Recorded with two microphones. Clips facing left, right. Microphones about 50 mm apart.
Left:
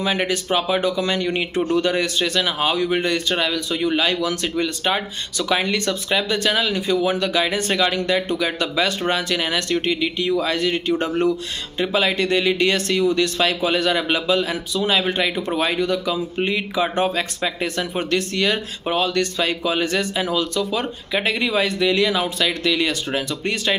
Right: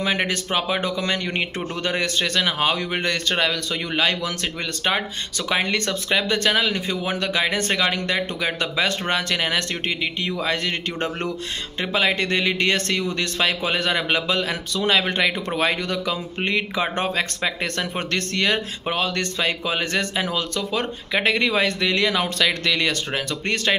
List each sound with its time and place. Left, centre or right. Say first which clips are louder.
0.0 s speech: left 1 dB; right